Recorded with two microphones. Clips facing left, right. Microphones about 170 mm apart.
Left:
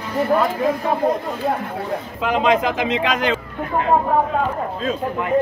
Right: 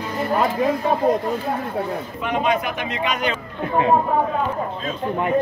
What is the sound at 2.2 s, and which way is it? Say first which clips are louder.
Speech: left 4 dB; 90° left.